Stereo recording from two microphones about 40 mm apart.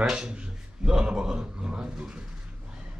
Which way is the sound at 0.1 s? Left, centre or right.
Right.